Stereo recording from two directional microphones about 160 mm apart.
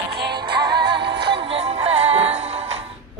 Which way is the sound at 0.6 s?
90° right.